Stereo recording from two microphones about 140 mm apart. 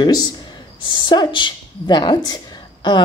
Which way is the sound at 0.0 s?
25° left (ahead or behind).